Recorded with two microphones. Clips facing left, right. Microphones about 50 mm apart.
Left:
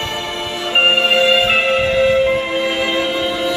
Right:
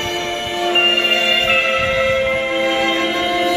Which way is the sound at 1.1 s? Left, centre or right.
Right.